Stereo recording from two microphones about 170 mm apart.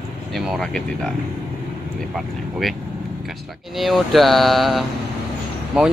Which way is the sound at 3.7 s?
Centre (ahead or behind).